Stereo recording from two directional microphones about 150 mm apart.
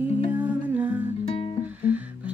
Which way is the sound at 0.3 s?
10° right (ahead or behind).